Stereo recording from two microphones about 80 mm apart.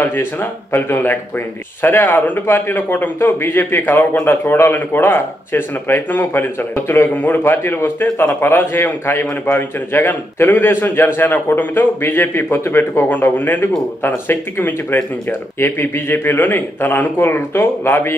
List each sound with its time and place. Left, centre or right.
0.0 s a man's voice: left